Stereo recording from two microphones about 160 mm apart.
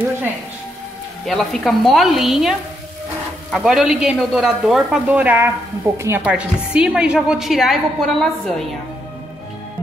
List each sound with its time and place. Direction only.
1.2 s a woman's voice: centre (ahead or behind)
3.5 s a woman's voice: 5° right (ahead or behind)